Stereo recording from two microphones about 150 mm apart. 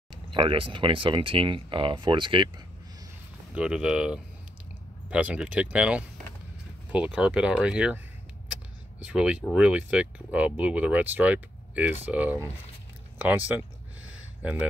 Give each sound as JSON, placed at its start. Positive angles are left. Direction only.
{"t": 0.3, "sound": "speech", "side_deg": -35}
{"t": 3.5, "sound": "speech", "side_deg": -5}
{"t": 9.0, "sound": "speech", "side_deg": -10}
{"t": 14.1, "sound": "a sound", "side_deg": -10}